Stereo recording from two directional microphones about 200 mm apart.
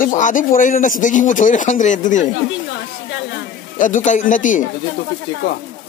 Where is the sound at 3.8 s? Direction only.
40° left (ahead or behind).